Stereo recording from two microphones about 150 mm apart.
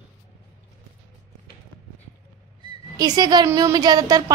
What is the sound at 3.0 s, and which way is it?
A woman's voice, 25° right (ahead or behind).